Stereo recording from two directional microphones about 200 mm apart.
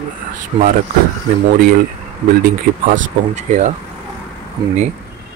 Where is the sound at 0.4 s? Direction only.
45° right (ahead or behind).